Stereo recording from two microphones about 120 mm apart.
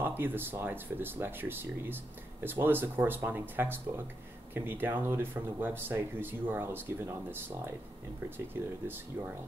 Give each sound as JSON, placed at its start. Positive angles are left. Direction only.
{"t": 0.0, "sound": "speech", "side_deg": -15}